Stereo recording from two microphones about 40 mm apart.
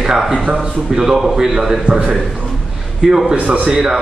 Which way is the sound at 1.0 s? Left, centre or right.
Centre.